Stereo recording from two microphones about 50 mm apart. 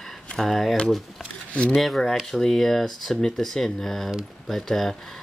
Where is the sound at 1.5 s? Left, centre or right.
Left.